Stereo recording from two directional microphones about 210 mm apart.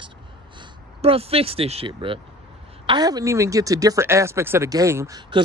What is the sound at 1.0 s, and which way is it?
Speech, 25° right (ahead or behind).